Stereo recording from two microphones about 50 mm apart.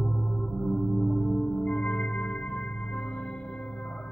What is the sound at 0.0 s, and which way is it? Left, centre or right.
Music, centre.